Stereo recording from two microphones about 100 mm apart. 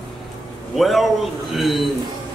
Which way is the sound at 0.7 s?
Centre (ahead or behind).